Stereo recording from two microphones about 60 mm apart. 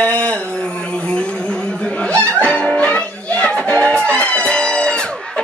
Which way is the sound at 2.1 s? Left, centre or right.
Left.